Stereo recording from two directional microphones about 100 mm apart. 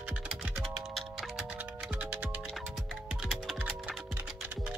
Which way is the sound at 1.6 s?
15° right (ahead or behind).